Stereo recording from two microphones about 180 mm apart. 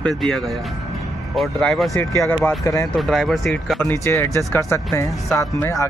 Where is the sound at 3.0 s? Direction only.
Centre (ahead or behind).